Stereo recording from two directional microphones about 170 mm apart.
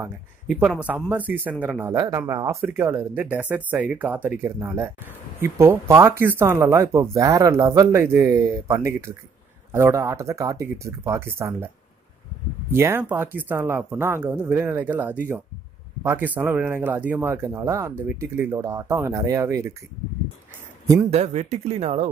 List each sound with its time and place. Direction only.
0.5 s a man's voice: 5° right (ahead or behind)
12.7 s speech: 15° right (ahead or behind)
21.1 s speech: 40° right (ahead or behind)